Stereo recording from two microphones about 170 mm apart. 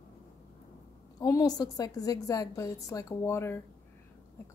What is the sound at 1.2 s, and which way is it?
A woman's voice, 20° left (ahead or behind).